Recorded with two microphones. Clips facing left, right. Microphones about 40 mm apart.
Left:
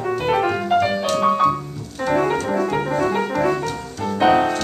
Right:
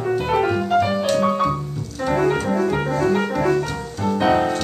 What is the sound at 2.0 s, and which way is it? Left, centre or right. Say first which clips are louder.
Piano: even; centre.